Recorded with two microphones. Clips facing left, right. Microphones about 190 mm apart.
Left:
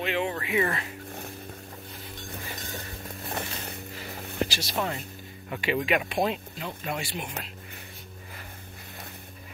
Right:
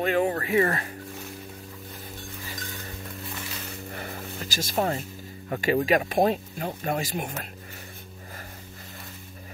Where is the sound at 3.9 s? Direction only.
55° right (ahead or behind).